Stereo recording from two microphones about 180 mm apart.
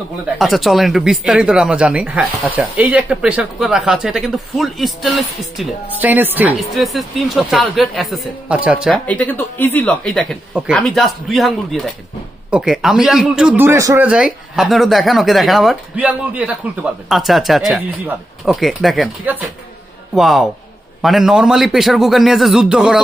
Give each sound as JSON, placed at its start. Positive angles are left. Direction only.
{"t": 0.4, "sound": "speech", "side_deg": 0}
{"t": 8.9, "sound": "speech", "side_deg": 10}